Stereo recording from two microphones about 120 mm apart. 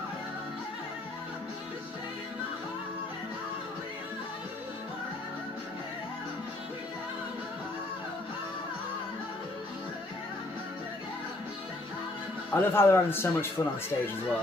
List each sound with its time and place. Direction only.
12.5 s a man's voice: 20° left (ahead or behind)